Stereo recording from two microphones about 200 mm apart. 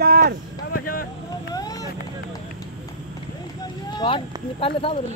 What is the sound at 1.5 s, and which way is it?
Vehicle, 20° left (ahead or behind).